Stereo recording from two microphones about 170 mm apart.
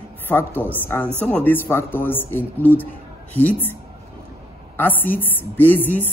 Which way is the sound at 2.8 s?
10° left (ahead or behind).